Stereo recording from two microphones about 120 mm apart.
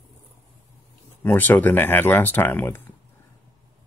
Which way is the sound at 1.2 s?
15° left (ahead or behind).